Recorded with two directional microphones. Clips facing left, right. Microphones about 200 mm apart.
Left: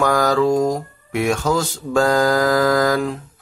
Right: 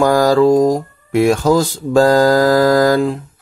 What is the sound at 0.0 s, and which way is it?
Speech, 30° right (ahead or behind).